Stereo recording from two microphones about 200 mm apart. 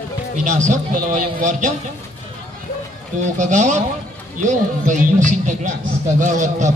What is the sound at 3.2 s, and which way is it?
Speech, 35° right (ahead or behind).